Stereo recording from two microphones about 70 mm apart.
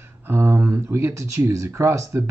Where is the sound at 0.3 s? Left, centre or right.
Right.